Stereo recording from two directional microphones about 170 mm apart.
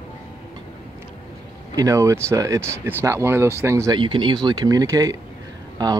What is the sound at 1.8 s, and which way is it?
Speech, 20° right (ahead or behind).